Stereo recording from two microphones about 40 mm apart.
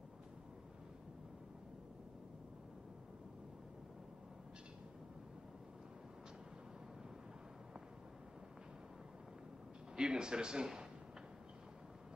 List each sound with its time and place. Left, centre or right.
9.9 s speech: centre